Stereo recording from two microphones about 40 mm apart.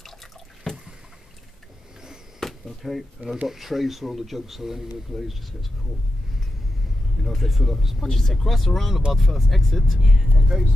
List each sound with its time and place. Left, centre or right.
0.0 s drip: centre
2.4 s speech: centre
7.2 s speech: centre
8.0 s speech: centre
8.3 s speech: centre